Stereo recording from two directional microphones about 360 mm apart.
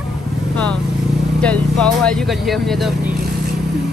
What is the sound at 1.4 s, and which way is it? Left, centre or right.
Speech, centre.